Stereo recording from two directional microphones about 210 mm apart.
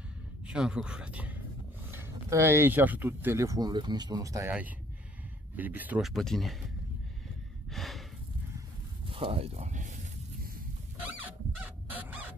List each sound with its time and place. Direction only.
0.5 s speech: 5° right (ahead or behind)
7.7 s snort: centre (ahead or behind)
9.0 s a sound: 25° right (ahead or behind)
11.6 s crow: 10° right (ahead or behind)